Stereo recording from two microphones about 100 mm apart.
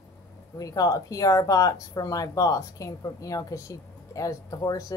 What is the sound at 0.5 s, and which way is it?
Speech, 35° left (ahead or behind).